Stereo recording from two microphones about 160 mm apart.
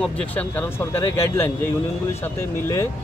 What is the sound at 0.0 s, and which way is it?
Speech, 10° left (ahead or behind).